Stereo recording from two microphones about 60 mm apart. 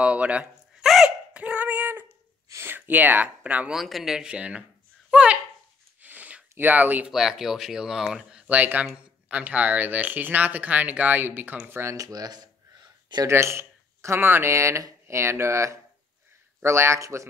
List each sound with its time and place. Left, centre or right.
0.0 s speech: right
0.8 s a sound: centre
1.3 s female singing: right
2.6 s speech: right
3.7 s speech: centre
4.2 s speech: centre
5.1 s a sound: centre
6.6 s speech: right
7.1 s speech: centre
8.5 s speech: right
11.6 s speech: right
12.0 s speech: right
13.3 s speech: right